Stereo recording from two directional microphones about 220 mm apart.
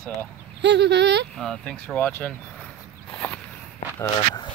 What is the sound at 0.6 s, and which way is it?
Speech, 50° right (ahead or behind).